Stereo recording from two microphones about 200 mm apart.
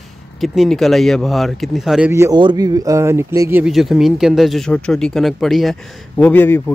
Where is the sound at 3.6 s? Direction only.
Centre (ahead or behind).